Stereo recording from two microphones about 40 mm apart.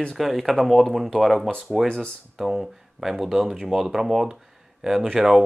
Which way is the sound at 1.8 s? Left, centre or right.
Left.